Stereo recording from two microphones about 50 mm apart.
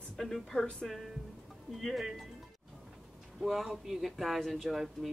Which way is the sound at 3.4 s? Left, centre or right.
Centre.